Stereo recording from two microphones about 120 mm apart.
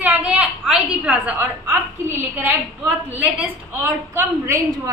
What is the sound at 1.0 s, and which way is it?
Speech, 10° right (ahead or behind).